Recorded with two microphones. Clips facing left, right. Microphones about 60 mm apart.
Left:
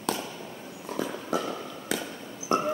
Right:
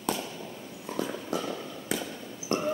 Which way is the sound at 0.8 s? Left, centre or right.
Centre.